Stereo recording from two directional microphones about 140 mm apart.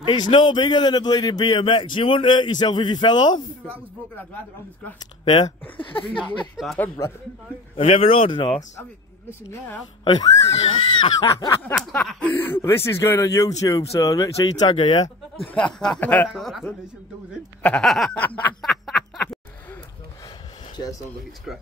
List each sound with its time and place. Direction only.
0.0 s a man's voice: 35° left (ahead or behind)
5.3 s a man's voice: 35° left (ahead or behind)
7.7 s a man's voice: 40° left (ahead or behind)
10.0 s speech: 30° left (ahead or behind)
11.9 s a man's voice: 10° left (ahead or behind); by 15.0 s 35° left (ahead or behind)
15.4 s speech: 10° left (ahead or behind)
16.3 s a sound: centre (ahead or behind)
18.2 s snicker: 10° left (ahead or behind)